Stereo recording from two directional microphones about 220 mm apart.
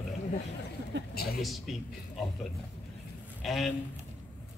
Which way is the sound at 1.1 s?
45° left (ahead or behind).